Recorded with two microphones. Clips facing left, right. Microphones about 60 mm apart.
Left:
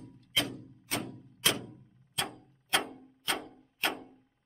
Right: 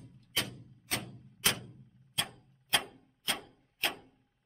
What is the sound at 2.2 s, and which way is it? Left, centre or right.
Clock, centre.